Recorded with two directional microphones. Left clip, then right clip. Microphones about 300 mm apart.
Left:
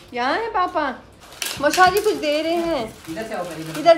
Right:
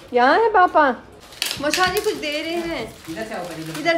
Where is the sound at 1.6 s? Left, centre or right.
Centre.